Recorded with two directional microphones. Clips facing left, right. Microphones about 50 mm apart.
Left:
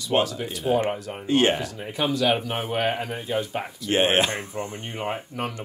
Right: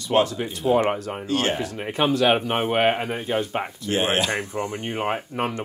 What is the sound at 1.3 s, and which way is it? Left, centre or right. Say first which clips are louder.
Speech: left 4 dB; left.